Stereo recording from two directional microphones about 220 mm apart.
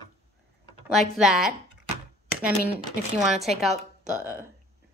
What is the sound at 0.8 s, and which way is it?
Speech, centre (ahead or behind).